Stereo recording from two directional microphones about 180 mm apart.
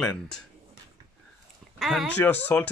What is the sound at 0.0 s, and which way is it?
Speech, 5° left (ahead or behind).